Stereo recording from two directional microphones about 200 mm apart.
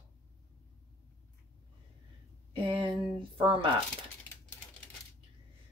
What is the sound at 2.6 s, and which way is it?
Speech, 25° right (ahead or behind).